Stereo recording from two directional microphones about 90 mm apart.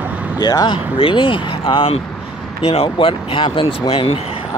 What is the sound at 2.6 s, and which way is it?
Speech, 90° left.